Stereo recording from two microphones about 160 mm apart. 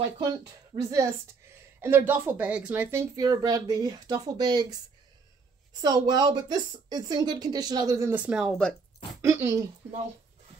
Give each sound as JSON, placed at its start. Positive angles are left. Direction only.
{"t": 0.8, "sound": "speech", "side_deg": -20}
{"t": 9.2, "sound": "speech", "side_deg": -20}